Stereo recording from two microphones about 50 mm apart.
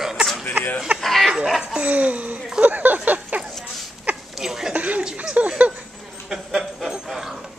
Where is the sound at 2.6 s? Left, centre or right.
Right.